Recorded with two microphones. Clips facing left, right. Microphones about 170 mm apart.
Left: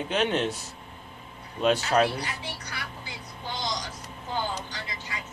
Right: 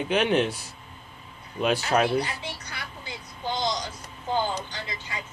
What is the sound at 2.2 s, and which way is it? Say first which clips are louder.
Speech: right 4 dB; 25° right (ahead or behind).